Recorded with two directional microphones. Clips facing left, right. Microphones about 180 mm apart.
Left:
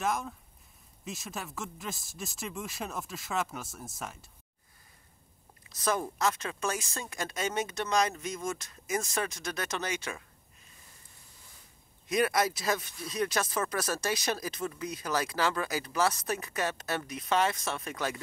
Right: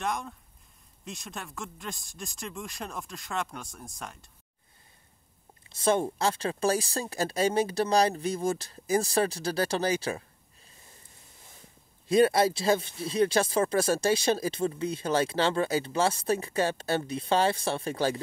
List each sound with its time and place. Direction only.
0.0 s speech: centre (ahead or behind)
5.7 s speech: 30° right (ahead or behind)
12.1 s speech: 30° right (ahead or behind)